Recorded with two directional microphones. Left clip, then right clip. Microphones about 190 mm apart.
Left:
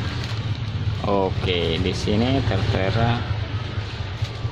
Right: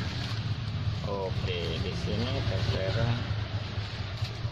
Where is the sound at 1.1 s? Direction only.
45° left (ahead or behind).